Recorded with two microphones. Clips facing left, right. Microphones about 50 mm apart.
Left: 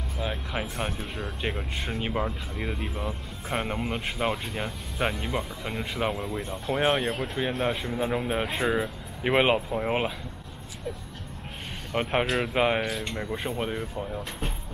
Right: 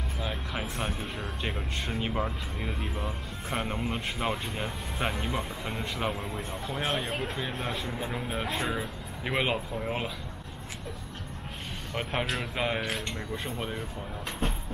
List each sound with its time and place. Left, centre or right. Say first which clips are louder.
0.2 s music: left 4 dB; centre
0.9 s speech: left 1 dB; centre
5.0 s speech: left 4 dB; centre
5.6 s speech: left 3 dB; centre; by 10.1 s left
11.9 s speech: left 6 dB; centre
13.0 s speech: left 4 dB; centre